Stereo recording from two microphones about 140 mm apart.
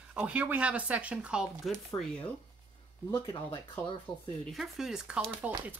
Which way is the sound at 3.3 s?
30° left (ahead or behind).